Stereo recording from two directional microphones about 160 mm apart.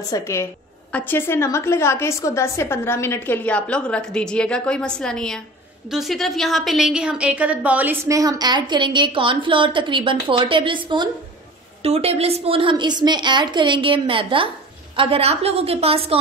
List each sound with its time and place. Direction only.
0.1 s a woman's voice: 20° left (ahead or behind); by 16.2 s 40° right (ahead or behind)